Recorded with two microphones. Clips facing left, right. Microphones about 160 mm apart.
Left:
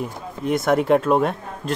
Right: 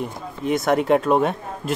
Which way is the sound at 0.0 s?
Centre (ahead or behind).